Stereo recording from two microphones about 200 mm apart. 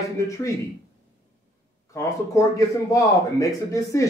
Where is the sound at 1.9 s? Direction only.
15° left (ahead or behind).